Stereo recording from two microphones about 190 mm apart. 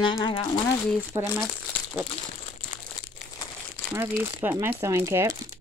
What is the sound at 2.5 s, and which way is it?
Crumpling, 25° left (ahead or behind).